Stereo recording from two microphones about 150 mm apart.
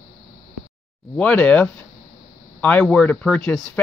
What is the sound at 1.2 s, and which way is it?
Speech, 10° left (ahead or behind).